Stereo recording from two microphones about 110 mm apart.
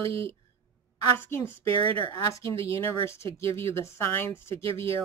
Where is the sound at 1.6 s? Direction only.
55° right (ahead or behind).